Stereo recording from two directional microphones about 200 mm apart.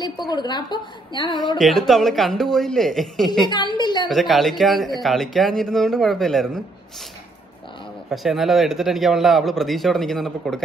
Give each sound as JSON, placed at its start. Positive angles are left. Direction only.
{"t": 0.0, "sound": "a woman's voice", "side_deg": 20}
{"t": 1.6, "sound": "a man's voice", "side_deg": 0}
{"t": 3.4, "sound": "a woman's voice", "side_deg": 20}
{"t": 4.1, "sound": "a man's voice", "side_deg": 0}
{"t": 8.1, "sound": "a man's voice", "side_deg": 0}